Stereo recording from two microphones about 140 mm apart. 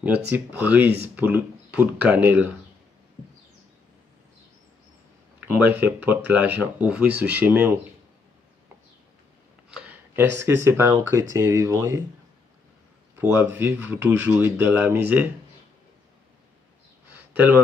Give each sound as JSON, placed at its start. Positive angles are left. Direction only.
{"t": 0.0, "sound": "speech", "side_deg": -10}
{"t": 5.4, "sound": "speech", "side_deg": -15}
{"t": 9.7, "sound": "a sound", "side_deg": -5}
{"t": 10.1, "sound": "speech", "side_deg": -20}
{"t": 13.2, "sound": "speech", "side_deg": -15}
{"t": 17.1, "sound": "a sound", "side_deg": -10}